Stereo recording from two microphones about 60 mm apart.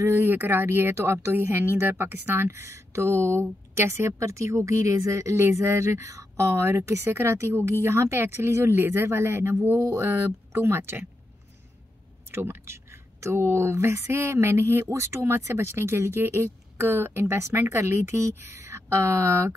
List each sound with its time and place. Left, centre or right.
0.3 s speech: right
1.4 s speech: right
12.3 s speech: right